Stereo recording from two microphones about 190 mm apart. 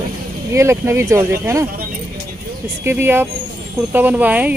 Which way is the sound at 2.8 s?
10° right (ahead or behind).